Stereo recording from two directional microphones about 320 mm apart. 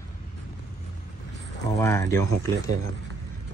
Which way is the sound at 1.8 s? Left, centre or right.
Centre.